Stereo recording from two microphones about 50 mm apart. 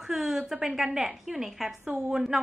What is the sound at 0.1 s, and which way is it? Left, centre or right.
A woman's voice, centre.